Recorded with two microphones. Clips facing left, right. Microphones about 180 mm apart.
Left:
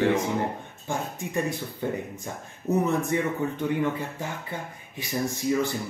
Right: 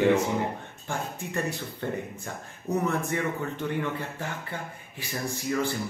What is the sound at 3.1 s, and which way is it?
Speech, 20° left (ahead or behind).